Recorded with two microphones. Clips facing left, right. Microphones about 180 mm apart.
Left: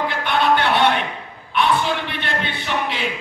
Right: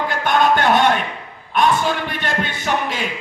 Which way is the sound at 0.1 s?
45° right (ahead or behind).